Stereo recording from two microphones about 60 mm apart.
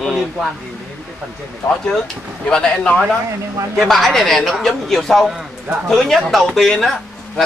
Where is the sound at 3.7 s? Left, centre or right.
Centre.